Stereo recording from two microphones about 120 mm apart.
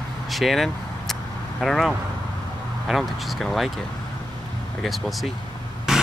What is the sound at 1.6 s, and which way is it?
Speech, centre (ahead or behind).